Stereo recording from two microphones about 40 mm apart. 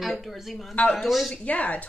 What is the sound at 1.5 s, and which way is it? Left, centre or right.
Speech, left.